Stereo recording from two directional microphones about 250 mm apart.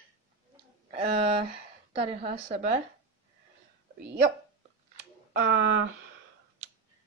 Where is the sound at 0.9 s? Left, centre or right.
Right.